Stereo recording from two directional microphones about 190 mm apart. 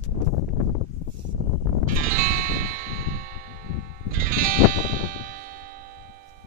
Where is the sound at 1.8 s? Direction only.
45° right (ahead or behind).